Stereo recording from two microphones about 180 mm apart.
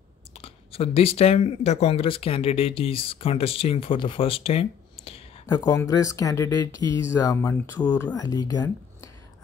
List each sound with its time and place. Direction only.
0.3 s speech: 30° left (ahead or behind)
5.5 s speech: 20° left (ahead or behind)